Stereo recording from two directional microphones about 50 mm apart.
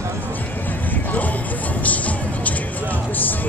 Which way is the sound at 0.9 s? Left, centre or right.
Left.